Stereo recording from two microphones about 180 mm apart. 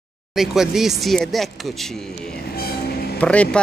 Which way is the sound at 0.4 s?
Centre (ahead or behind).